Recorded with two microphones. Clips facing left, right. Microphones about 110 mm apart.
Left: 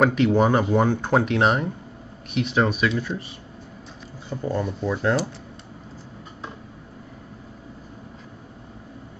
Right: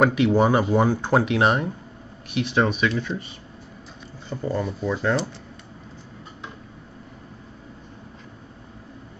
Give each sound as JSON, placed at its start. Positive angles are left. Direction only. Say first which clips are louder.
{"t": 0.0, "sound": "speech", "louder": "even", "side_deg": -5}